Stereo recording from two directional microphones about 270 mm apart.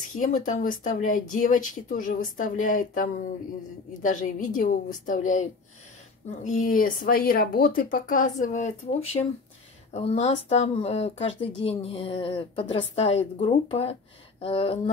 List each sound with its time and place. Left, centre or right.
0.2 s speech: left